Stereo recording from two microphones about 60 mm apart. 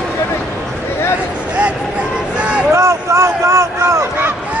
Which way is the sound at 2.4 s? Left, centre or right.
Centre.